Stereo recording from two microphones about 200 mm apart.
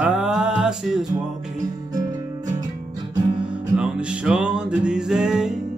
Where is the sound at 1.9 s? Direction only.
20° right (ahead or behind).